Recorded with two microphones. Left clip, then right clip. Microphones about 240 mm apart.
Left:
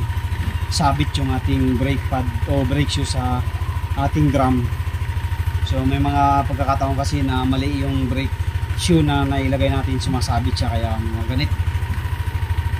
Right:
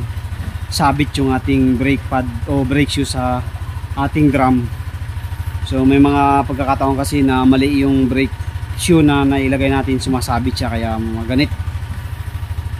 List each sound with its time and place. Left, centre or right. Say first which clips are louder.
0.7 s speech: right 5 dB; centre
5.7 s speech: right 10 dB; centre